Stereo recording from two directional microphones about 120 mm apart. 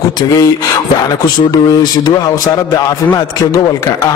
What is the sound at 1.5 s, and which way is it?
Speech, 35° left (ahead or behind).